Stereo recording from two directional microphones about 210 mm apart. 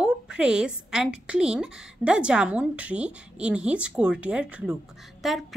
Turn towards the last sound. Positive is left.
turn(degrees=0)  # may be behind; listen again after turning